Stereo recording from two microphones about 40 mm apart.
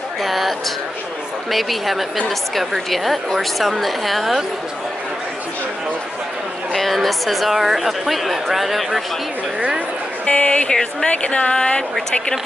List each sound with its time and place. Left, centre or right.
0.2 s a woman's voice: centre
6.7 s a woman's voice: centre
10.2 s speech: left
11.1 s speech: left